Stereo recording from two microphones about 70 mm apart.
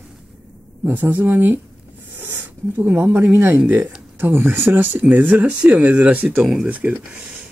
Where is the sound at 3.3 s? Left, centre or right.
Right.